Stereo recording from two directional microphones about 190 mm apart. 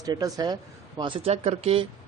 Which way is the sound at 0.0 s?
20° right (ahead or behind).